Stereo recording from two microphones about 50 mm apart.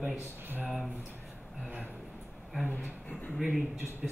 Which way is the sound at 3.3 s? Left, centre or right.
Centre.